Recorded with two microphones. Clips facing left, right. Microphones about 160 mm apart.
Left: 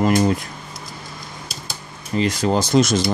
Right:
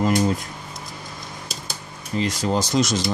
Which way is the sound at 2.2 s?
60° left (ahead or behind).